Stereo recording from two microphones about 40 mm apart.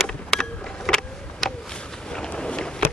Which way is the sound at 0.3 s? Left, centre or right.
Centre.